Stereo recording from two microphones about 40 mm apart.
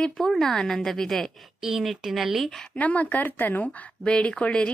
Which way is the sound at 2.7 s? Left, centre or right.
Left.